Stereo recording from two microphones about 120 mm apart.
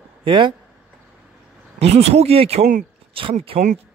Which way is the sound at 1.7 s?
60° right (ahead or behind).